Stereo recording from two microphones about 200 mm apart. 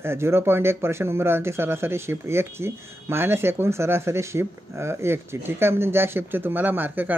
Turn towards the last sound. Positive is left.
turn(degrees=-10)  # may be behind; listen again after turning